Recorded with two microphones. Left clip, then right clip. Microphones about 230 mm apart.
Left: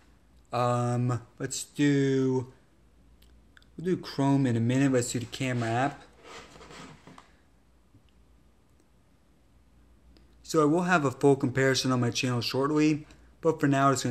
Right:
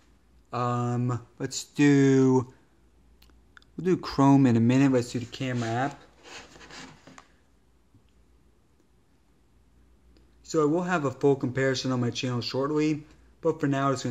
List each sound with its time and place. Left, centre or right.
0.5 s a man's voice: centre
1.5 s speech: right; by 5.9 s centre
10.1 s a man's voice: centre